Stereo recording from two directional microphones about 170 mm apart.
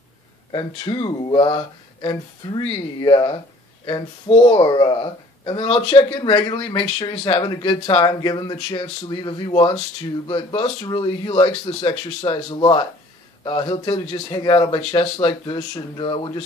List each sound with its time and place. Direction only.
0.5 s speech: 30° left (ahead or behind)